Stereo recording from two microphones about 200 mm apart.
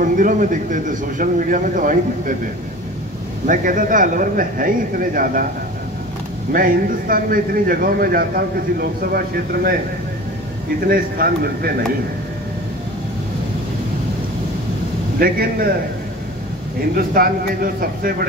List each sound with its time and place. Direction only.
0.0 s a man's voice: 40° right (ahead or behind)
3.4 s a man's voice: 40° right (ahead or behind)
6.5 s a man's voice: 45° right (ahead or behind)
10.9 s a man's voice: 50° right (ahead or behind)
15.1 s a man's voice: 45° right (ahead or behind)
16.9 s a man's voice: 45° right (ahead or behind)